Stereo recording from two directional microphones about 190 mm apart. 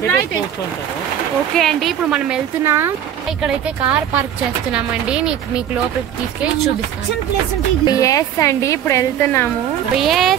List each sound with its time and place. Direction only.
1.6 s speech: centre (ahead or behind)
7.8 s a woman's voice: 20° left (ahead or behind)
9.9 s speech: centre (ahead or behind)